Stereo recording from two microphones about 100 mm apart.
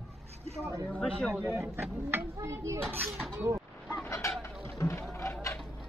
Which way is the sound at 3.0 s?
Centre (ahead or behind).